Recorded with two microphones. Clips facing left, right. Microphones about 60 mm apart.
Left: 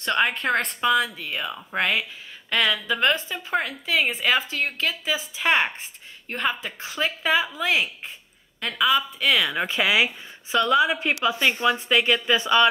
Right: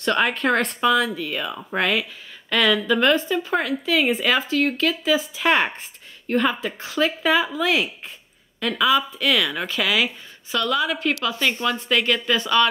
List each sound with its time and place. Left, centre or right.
0.0 s speech: centre
9.7 s a woman's voice: left